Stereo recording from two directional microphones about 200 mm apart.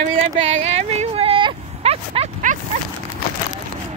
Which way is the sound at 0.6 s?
35° right (ahead or behind).